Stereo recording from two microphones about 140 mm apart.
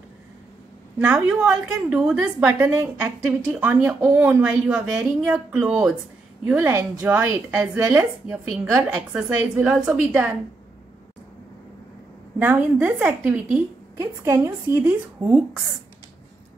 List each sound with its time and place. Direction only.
0.9 s a woman's voice: 10° right (ahead or behind)
12.4 s a woman's voice: 10° right (ahead or behind)